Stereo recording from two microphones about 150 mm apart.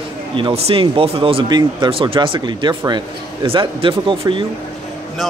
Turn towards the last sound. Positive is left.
turn(degrees=-35)  # may be behind; listen again after turning